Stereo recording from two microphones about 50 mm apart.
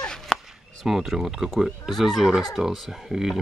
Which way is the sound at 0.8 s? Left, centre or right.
Centre.